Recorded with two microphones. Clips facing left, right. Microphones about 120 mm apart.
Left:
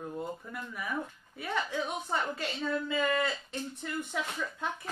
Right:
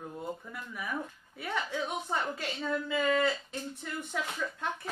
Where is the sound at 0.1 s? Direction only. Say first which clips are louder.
Left 1 dB; centre (ahead or behind).